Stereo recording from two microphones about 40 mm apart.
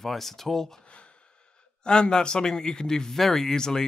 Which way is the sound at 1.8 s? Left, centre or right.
Left.